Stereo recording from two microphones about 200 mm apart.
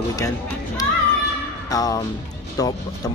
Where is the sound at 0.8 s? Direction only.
20° left (ahead or behind).